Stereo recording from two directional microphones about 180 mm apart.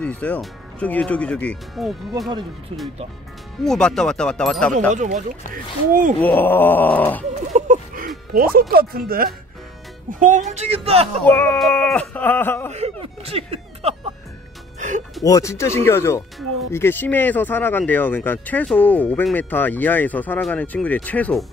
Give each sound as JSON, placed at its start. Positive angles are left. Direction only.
{"t": 0.0, "sound": "speech", "side_deg": 10}
{"t": 3.6, "sound": "speech", "side_deg": 5}
{"t": 4.9, "sound": "speech", "side_deg": -40}
{"t": 6.2, "sound": "speech", "side_deg": 10}
{"t": 7.5, "sound": "a sound", "side_deg": -45}
{"t": 8.3, "sound": "speech", "side_deg": -50}
{"t": 10.5, "sound": "speech", "side_deg": -35}
{"t": 11.2, "sound": "speech", "side_deg": 5}
{"t": 12.7, "sound": "speech", "side_deg": -35}
{"t": 14.8, "sound": "music", "side_deg": -45}
{"t": 15.2, "sound": "speech", "side_deg": 15}